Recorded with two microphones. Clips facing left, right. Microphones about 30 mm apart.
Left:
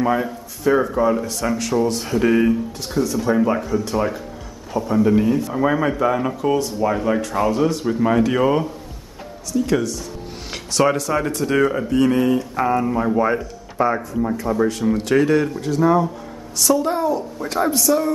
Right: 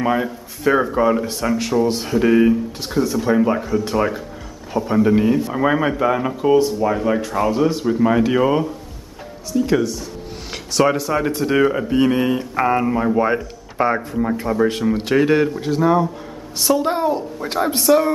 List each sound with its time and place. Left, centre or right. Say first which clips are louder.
0.1 s speech: right 1 dB; centre
1.7 s speech: right 1 dB; centre
2.8 s speech: right 1 dB; centre
3.4 s a man's voice: right 1 dB; centre; by 12.9 s right
12.9 s a man's voice: right 1 dB; centre
13.7 s speech: right 1 dB; right
14.8 s a man's voice: even; centre
15.2 s a man's voice: right 2 dB; right
16.5 s speech: even; right